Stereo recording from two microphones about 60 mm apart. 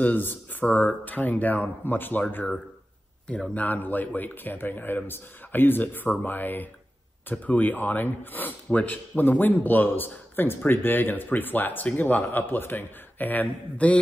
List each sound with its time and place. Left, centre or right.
0.0 s speech: left
3.5 s speech: left